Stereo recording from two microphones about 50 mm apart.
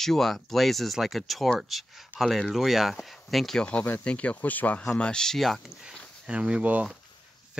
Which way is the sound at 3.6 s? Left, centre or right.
Left.